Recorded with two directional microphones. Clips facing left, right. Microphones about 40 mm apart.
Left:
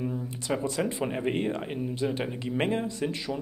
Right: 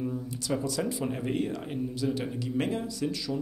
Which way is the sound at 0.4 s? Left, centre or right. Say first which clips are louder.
Left 2 dB; left.